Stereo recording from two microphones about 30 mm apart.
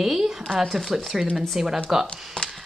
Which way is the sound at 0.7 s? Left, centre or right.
Centre.